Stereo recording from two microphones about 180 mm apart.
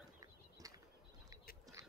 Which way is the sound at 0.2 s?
20° right (ahead or behind).